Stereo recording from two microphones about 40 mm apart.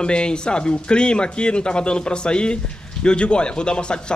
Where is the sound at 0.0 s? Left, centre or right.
Left.